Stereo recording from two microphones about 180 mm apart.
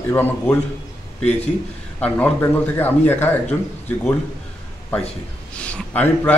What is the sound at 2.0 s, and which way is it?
A man's voice, 10° left (ahead or behind).